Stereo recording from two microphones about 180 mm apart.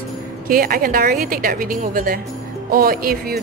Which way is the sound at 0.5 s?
50° right (ahead or behind).